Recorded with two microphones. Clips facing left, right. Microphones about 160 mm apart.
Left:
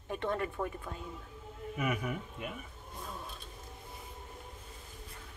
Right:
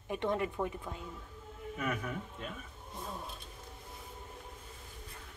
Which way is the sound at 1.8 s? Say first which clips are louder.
Left 2 dB; 10° left (ahead or behind).